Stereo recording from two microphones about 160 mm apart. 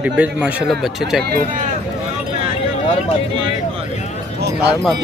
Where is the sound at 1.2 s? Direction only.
65° right (ahead or behind).